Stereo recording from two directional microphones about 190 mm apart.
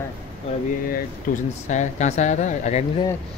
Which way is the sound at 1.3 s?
45° left (ahead or behind).